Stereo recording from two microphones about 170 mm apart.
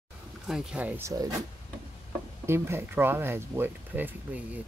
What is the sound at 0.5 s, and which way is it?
Speech, 5° right (ahead or behind).